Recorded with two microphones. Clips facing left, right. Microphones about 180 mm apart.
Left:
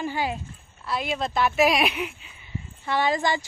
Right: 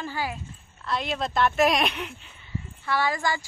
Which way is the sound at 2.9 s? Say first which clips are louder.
Left 3 dB; 20° left (ahead or behind).